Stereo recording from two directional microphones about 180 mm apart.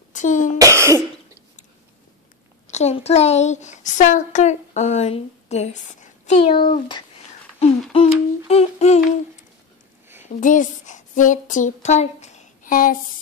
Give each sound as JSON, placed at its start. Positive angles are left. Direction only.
{"t": 0.1, "sound": "cough", "side_deg": 45}
{"t": 0.6, "sound": "cough", "side_deg": -15}
{"t": 2.7, "sound": "a woman's voice", "side_deg": 35}
{"t": 7.9, "sound": "humming", "side_deg": 35}
{"t": 10.2, "sound": "a woman's voice", "side_deg": 45}